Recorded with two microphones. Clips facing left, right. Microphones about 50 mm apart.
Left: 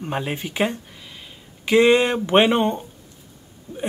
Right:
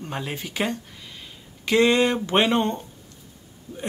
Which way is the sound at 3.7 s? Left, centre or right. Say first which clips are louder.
Left 3 dB; left.